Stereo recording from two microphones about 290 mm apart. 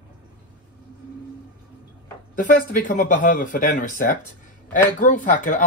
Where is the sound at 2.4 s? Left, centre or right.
Left.